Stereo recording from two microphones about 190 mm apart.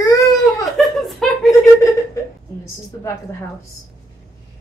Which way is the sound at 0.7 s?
Centre (ahead or behind).